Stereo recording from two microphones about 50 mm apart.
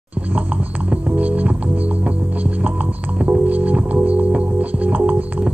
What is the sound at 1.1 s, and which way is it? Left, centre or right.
Music, right.